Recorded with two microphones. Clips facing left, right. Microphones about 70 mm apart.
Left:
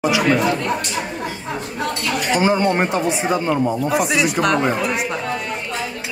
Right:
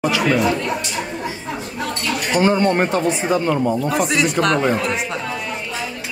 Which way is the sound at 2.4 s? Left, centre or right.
Centre.